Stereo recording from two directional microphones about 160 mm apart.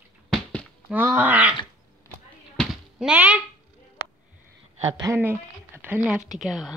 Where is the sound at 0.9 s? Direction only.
10° right (ahead or behind).